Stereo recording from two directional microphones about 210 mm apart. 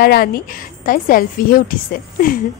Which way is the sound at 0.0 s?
45° left (ahead or behind).